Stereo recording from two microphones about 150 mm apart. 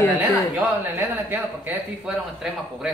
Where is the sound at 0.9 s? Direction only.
15° right (ahead or behind).